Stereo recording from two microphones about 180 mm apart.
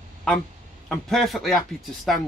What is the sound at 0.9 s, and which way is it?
A man's voice, centre (ahead or behind).